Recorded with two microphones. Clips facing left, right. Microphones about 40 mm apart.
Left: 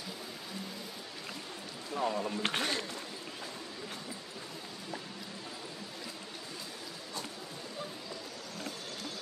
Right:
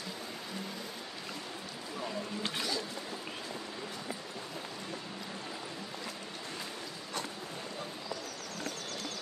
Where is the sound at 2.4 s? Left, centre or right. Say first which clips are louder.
Even; left.